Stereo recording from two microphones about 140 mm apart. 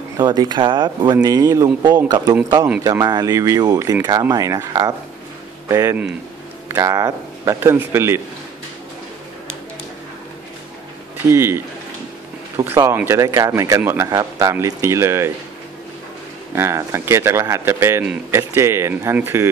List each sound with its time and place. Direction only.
0.2 s speech: 30° right (ahead or behind)
11.2 s speech: 15° right (ahead or behind)
16.5 s speech: 20° right (ahead or behind)